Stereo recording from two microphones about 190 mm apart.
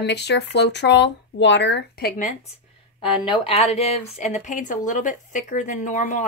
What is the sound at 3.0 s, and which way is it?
Speech, 25° left (ahead or behind).